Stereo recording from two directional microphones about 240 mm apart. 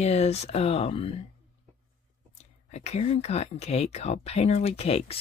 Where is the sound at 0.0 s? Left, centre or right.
Left.